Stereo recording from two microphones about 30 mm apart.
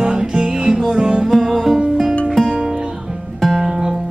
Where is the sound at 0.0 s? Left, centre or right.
Right.